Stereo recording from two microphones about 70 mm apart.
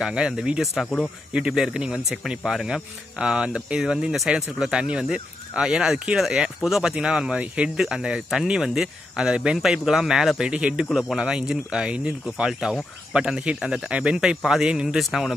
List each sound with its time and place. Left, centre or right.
0.0 s speech: centre
10.5 s speech: centre
10.9 s speech: centre